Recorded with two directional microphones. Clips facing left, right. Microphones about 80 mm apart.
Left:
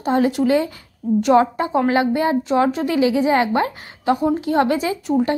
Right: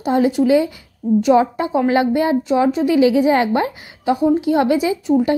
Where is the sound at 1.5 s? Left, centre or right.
Left.